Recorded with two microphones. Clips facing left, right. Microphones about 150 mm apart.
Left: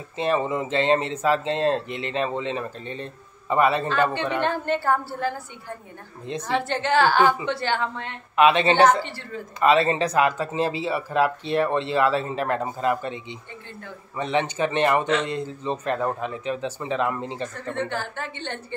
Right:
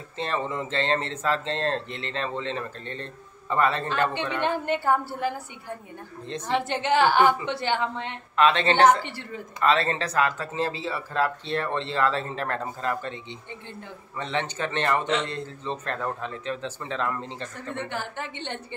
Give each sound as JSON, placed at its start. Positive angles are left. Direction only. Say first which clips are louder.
{"t": 0.2, "sound": "speech", "louder": "left 5 dB", "side_deg": 10}
{"t": 4.4, "sound": "a woman's voice", "louder": "even", "side_deg": -15}
{"t": 6.2, "sound": "speech", "louder": "left 3 dB", "side_deg": 10}
{"t": 6.5, "sound": "a woman's voice", "louder": "left 1 dB", "side_deg": -15}
{"t": 8.4, "sound": "speech", "louder": "left 3 dB", "side_deg": 10}
{"t": 9.0, "sound": "a woman's voice", "louder": "left 2 dB", "side_deg": -15}
{"t": 9.6, "sound": "speech", "louder": "left 4 dB", "side_deg": 15}
{"t": 17.7, "sound": "a woman's voice", "louder": "left 4 dB", "side_deg": -15}